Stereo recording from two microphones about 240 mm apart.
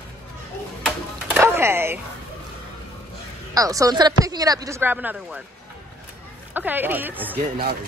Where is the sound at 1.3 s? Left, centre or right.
Centre.